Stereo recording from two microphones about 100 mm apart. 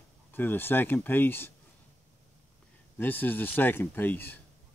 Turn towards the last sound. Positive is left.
turn(degrees=20)  # may be behind; listen again after turning